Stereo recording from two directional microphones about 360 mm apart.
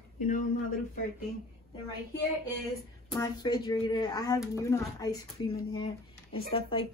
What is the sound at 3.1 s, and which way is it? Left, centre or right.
A woman's voice, centre.